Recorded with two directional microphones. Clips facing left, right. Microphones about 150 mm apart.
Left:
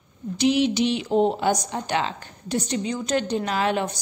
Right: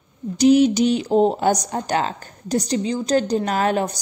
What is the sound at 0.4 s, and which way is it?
Speech, 45° right (ahead or behind).